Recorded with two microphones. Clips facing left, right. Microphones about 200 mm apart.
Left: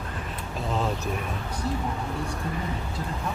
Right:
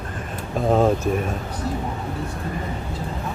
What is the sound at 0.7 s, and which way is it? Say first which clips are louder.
Speech: right 11 dB; 50° right (ahead or behind).